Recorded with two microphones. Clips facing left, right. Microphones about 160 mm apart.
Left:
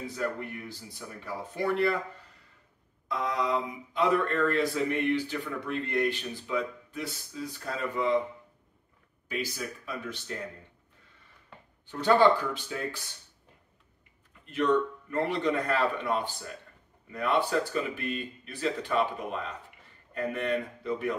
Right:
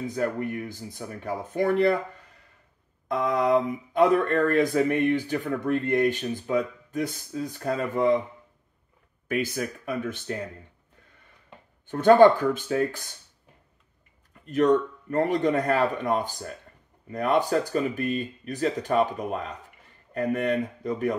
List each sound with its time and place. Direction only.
0.0 s speech: 50° right (ahead or behind)
3.1 s speech: 55° right (ahead or behind)
9.3 s speech: 55° right (ahead or behind)
11.9 s speech: 50° right (ahead or behind)
14.4 s speech: 45° right (ahead or behind)